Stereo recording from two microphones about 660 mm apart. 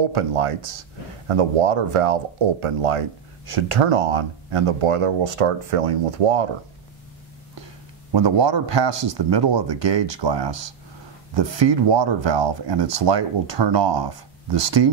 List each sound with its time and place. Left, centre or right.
0.0 s speech: right
8.1 s speech: right